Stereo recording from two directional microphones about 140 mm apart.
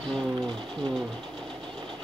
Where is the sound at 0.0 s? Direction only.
5° left (ahead or behind).